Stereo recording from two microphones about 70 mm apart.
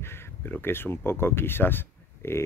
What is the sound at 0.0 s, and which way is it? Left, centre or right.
Speech, left.